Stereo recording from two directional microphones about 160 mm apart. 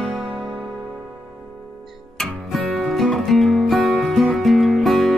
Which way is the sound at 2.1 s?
Centre (ahead or behind).